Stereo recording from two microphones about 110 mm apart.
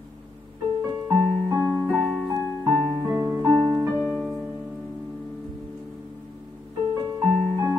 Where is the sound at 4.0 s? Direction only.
10° right (ahead or behind).